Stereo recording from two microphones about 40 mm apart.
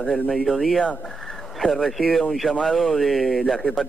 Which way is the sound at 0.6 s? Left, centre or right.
Centre.